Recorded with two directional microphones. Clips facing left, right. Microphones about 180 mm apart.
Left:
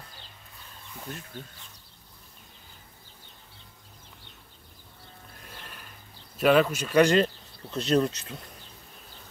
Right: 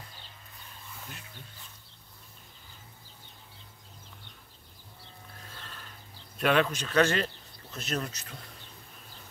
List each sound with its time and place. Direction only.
5.6 s a sound: 15° left (ahead or behind)
6.3 s speech: 5° left (ahead or behind)
7.7 s speech: 30° left (ahead or behind)